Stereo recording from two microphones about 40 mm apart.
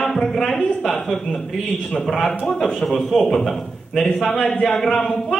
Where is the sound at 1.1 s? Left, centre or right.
Centre.